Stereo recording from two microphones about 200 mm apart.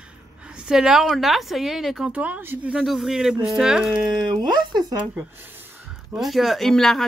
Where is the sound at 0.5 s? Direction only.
5° right (ahead or behind).